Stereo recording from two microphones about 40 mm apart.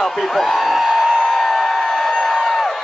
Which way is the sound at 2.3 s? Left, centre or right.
Centre.